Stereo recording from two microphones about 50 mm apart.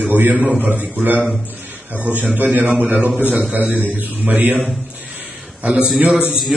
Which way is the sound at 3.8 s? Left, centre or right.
Right.